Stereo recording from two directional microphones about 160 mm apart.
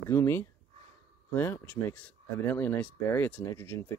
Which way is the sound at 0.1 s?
15° left (ahead or behind).